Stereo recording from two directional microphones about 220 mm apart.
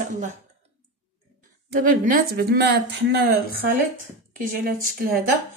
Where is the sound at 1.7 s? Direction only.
40° right (ahead or behind).